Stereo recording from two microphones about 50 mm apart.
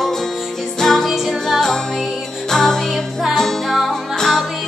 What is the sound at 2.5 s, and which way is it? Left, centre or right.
Music, centre.